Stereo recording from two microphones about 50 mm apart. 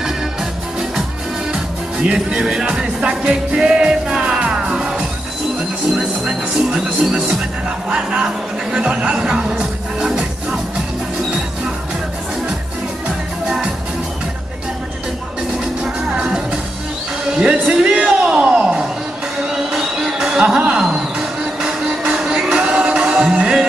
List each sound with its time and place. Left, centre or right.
2.0 s music: right
8.7 s music: right
15.8 s music: centre
17.4 s a sound: centre
19.5 s music: centre